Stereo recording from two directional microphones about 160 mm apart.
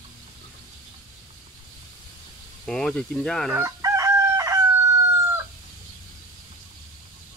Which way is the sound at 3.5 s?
20° right (ahead or behind).